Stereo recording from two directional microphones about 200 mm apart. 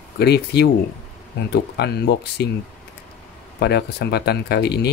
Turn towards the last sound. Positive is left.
turn(degrees=55)  # may be behind; listen again after turning